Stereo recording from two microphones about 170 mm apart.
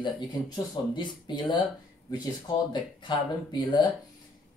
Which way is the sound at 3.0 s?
25° left (ahead or behind).